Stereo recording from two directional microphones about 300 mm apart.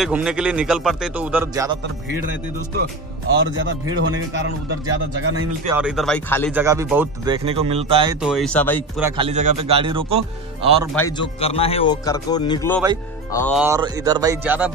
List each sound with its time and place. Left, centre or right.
0.0 s speech: centre
3.3 s speech: right
5.7 s speech: centre
6.5 s speech: centre
8.2 s speech: centre
9.0 s speech: centre
11.0 s speech: centre
13.6 s speech: centre